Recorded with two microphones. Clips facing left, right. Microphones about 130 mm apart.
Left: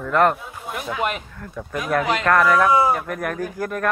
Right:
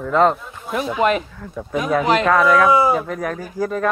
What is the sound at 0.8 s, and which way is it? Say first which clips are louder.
Speech: right 7 dB; 90° right.